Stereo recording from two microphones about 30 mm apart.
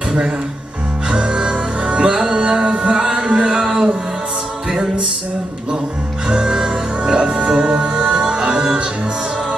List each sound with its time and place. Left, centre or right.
1.1 s music: right
3.6 s music: centre
6.2 s music: right
6.5 s music: right
7.2 s music: right